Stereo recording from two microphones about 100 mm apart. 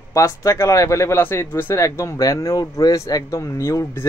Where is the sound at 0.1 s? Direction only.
35° left (ahead or behind).